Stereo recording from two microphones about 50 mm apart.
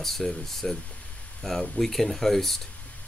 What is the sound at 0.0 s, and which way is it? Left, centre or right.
Speech, centre.